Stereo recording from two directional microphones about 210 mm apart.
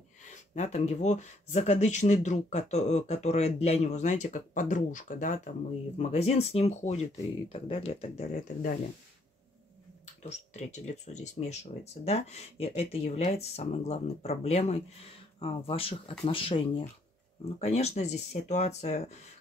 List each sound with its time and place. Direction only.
0.2 s speech: 35° left (ahead or behind)
10.2 s speech: 35° left (ahead or behind)